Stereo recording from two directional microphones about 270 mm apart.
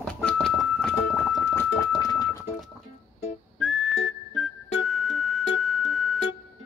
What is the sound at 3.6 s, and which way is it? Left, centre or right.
Music, centre.